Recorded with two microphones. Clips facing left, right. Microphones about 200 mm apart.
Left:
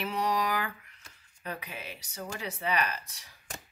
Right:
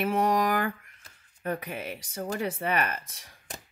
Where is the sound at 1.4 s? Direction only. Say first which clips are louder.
Right 7 dB; 50° right (ahead or behind).